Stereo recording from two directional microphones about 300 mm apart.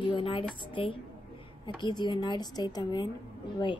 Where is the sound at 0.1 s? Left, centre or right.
Centre.